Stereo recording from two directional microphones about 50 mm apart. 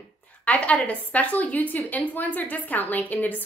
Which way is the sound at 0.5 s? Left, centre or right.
Left.